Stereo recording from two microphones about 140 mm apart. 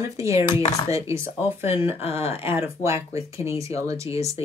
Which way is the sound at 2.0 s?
45° left (ahead or behind).